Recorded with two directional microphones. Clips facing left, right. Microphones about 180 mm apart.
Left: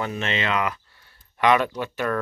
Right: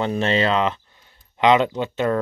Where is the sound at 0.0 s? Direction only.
35° right (ahead or behind).